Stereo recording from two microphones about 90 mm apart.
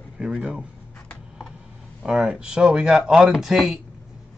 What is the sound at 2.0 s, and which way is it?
Speech, 10° right (ahead or behind).